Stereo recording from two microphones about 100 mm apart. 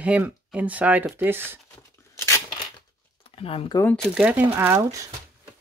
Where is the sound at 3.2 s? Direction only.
75° left (ahead or behind).